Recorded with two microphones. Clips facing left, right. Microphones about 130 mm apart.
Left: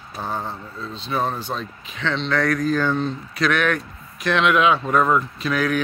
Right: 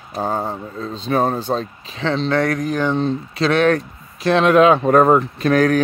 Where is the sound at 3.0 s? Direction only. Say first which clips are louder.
Right 4 dB; 30° right (ahead or behind).